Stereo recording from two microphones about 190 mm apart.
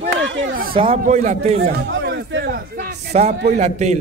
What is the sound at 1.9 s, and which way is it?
Speech, 70° right (ahead or behind).